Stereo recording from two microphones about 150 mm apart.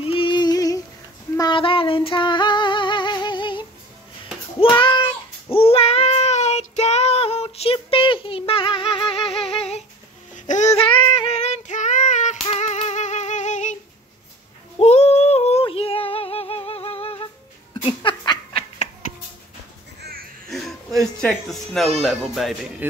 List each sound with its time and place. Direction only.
0.0 s a sound: 35° left (ahead or behind)
1.5 s female singing: 35° left (ahead or behind)
4.6 s child singing: 30° left (ahead or behind); by 10.8 s 50° left (ahead or behind)
11.3 s female singing: 50° left (ahead or behind)
14.8 s female singing: 45° left (ahead or behind)
17.8 s a sound: 30° left (ahead or behind)
20.0 s music: 90° right
20.4 s music: centre (ahead or behind)